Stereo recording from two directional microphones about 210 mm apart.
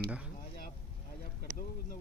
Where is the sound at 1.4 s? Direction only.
40° left (ahead or behind).